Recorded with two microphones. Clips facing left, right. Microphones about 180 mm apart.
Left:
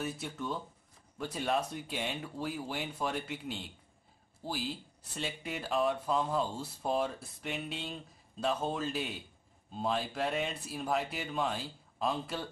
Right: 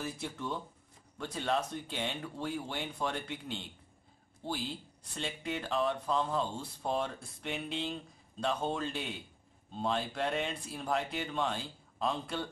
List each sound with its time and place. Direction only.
0.0 s speech: centre (ahead or behind)